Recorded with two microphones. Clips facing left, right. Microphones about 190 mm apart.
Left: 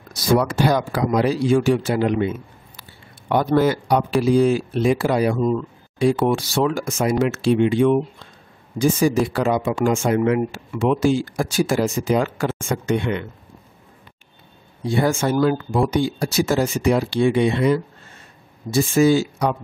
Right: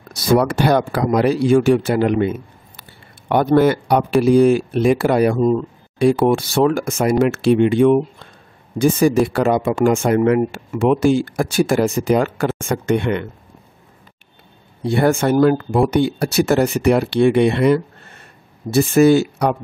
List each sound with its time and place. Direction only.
0.1 s speech: 60° right (ahead or behind)
5.4 s speech: 35° right (ahead or behind)
5.9 s speech: 55° right (ahead or behind)
14.8 s speech: 60° right (ahead or behind)